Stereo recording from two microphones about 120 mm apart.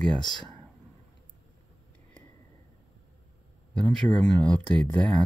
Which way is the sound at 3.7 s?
5° left (ahead or behind).